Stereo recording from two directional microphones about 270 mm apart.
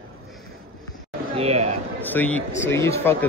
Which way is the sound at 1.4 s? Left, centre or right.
Right.